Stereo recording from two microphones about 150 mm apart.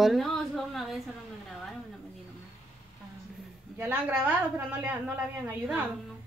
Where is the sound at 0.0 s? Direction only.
Centre (ahead or behind).